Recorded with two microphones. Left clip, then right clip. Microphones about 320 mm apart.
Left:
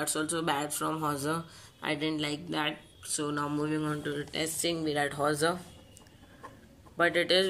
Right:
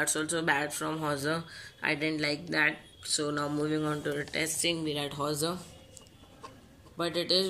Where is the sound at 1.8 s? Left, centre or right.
Centre.